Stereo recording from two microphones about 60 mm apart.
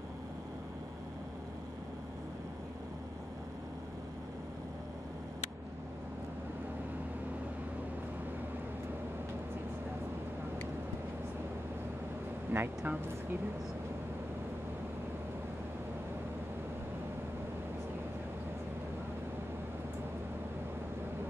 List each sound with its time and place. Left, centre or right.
12.4 s speech: right